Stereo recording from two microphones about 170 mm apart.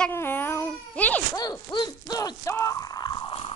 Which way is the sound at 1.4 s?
20° left (ahead or behind).